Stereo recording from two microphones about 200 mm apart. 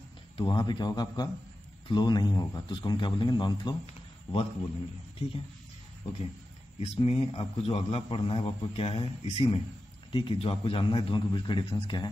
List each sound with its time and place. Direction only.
0.4 s a man's voice: 25° left (ahead or behind)
6.8 s a man's voice: 30° left (ahead or behind)